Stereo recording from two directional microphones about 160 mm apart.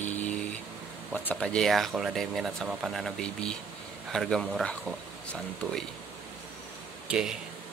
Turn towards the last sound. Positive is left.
turn(degrees=-5)  # may be behind; listen again after turning